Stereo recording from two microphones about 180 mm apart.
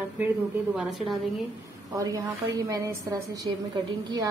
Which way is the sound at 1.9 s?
20° right (ahead or behind).